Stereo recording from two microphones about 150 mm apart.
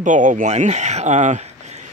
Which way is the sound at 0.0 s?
55° right (ahead or behind).